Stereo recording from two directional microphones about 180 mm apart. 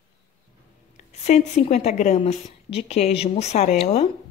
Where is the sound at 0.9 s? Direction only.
40° left (ahead or behind).